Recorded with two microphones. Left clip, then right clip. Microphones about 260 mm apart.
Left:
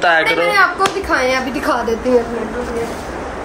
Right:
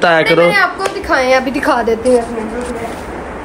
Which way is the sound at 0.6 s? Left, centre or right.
Centre.